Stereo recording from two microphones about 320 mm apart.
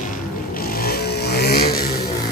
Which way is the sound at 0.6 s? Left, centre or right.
Left.